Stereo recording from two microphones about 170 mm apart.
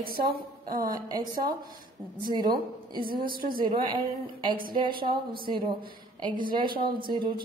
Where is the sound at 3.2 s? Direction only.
55° right (ahead or behind).